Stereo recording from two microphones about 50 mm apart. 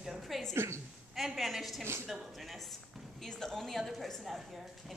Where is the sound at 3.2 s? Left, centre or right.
Centre.